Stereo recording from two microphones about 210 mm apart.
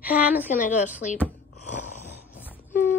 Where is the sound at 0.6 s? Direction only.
35° left (ahead or behind).